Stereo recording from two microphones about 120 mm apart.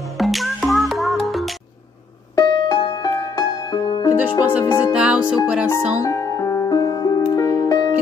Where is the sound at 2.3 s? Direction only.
35° left (ahead or behind).